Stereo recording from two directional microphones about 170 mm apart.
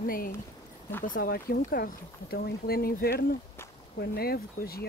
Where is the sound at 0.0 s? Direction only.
55° left (ahead or behind).